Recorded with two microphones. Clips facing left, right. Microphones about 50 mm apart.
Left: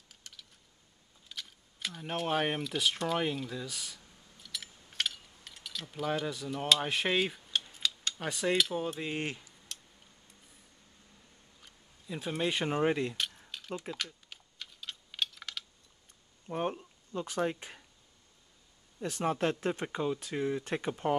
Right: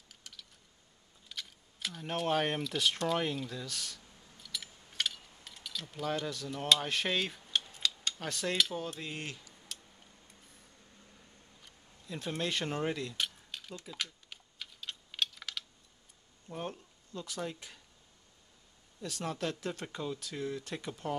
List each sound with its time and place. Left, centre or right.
0.1 s a sound: centre
1.3 s camera: centre
6.8 s speech: centre
7.4 s a sound: centre
8.2 s speech: centre
9.7 s tick-tock: centre
11.6 s speech: centre; by 13.2 s left
13.5 s mechanisms: centre
13.9 s typing: centre
16.4 s speech: left
18.9 s speech: left